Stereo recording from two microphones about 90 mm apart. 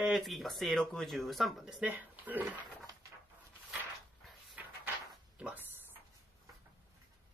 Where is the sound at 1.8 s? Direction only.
20° right (ahead or behind).